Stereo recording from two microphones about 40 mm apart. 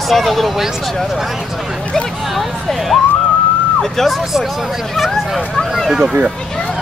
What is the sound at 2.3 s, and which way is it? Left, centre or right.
Speech, centre.